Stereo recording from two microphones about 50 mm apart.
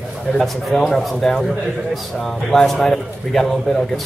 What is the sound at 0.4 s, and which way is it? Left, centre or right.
Speech, centre.